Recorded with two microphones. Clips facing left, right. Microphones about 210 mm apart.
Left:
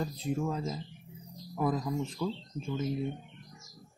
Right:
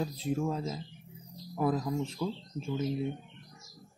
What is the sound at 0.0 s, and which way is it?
Speech, centre (ahead or behind).